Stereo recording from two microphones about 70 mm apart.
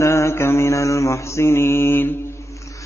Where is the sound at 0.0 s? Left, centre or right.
Left.